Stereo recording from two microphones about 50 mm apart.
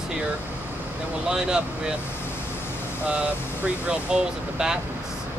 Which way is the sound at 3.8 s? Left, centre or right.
Centre.